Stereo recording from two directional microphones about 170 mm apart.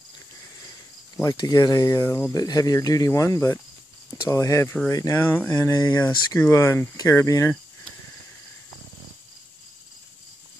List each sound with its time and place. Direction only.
1.1 s speech: 20° left (ahead or behind)
5.6 s speech: 20° left (ahead or behind)
5.9 s speech: 10° left (ahead or behind)